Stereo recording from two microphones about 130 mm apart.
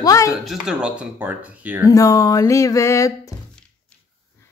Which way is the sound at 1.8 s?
25° left (ahead or behind).